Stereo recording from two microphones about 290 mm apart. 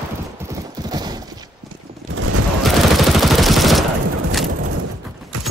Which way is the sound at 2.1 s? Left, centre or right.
Right.